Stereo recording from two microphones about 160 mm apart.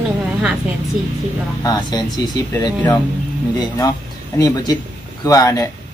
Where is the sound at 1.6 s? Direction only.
25° left (ahead or behind).